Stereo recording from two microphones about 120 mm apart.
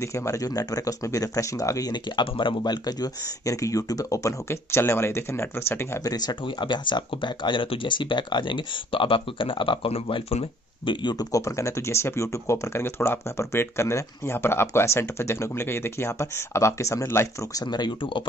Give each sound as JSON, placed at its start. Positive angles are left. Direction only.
{"t": 0.0, "sound": "speech", "side_deg": 25}
{"t": 6.1, "sound": "speech", "side_deg": 40}